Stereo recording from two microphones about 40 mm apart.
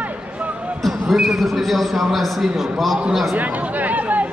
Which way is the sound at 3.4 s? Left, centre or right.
Right.